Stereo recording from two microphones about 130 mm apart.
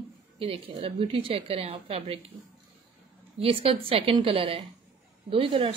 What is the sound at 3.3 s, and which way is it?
A woman's voice, 45° right (ahead or behind).